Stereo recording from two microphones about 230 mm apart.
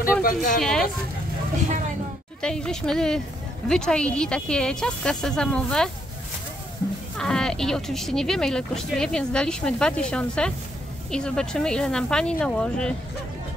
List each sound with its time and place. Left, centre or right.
0.2 s speech: left
0.6 s speech: centre
2.4 s speech: centre
7.2 s speech: centre